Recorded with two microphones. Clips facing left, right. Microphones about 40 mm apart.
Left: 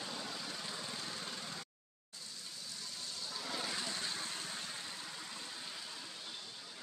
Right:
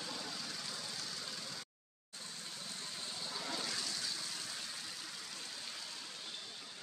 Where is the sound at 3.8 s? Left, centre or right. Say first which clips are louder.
Left 2 dB; left.